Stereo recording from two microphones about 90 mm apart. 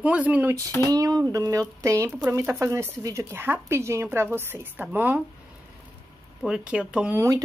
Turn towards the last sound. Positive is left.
turn(degrees=-35)  # may be behind; listen again after turning